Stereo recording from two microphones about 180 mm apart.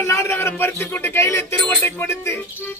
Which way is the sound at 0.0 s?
15° left (ahead or behind).